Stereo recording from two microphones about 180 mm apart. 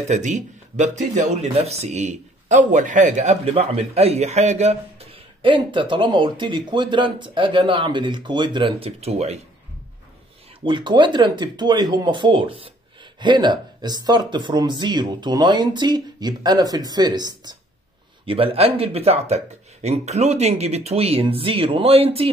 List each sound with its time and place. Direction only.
0.1 s speech: 45° right (ahead or behind)
5.4 s speech: 25° right (ahead or behind)
10.6 s speech: 25° right (ahead or behind)